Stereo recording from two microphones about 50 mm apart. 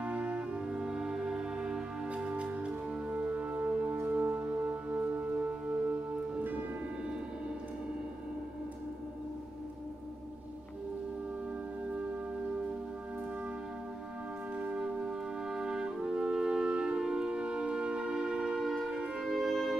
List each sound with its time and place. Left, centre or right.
0.0 s music: right
14.6 s brass instrument: centre
19.2 s music: centre